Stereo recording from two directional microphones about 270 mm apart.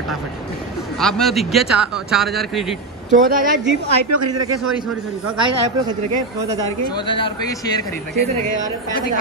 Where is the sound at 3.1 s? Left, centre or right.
Right.